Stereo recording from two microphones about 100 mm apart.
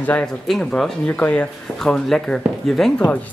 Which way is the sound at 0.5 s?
5° left (ahead or behind).